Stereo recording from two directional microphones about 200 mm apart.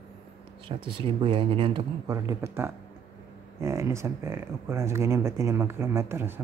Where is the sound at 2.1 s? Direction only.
15° right (ahead or behind).